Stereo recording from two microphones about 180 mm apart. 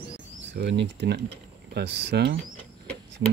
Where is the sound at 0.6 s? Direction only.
75° right (ahead or behind).